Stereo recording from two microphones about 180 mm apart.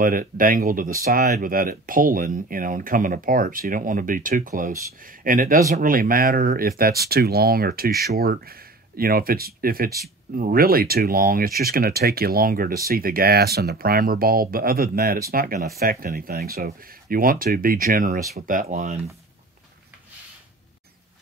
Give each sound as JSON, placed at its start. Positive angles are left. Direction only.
{"t": 0.0, "sound": "speech", "side_deg": -50}